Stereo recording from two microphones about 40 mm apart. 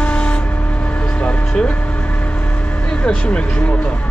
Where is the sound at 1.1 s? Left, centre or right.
Left.